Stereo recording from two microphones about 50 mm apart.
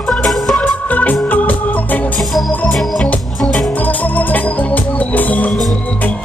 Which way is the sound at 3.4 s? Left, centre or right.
Centre.